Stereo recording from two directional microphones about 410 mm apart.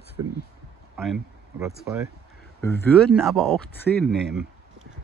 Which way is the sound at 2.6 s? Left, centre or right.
Centre.